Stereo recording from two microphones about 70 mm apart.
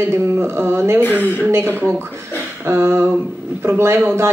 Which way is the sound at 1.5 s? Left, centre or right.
Right.